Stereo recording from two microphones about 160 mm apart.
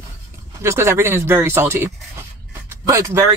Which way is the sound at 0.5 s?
15° right (ahead or behind).